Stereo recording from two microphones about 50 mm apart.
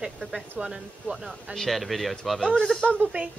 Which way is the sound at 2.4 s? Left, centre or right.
Centre.